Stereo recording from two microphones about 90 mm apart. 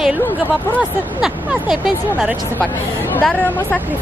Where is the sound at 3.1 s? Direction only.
20° left (ahead or behind).